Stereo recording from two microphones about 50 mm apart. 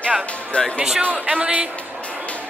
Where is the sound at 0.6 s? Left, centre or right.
Left.